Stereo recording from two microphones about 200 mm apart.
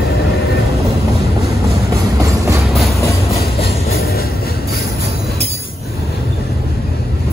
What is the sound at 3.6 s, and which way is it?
Train, 50° left (ahead or behind).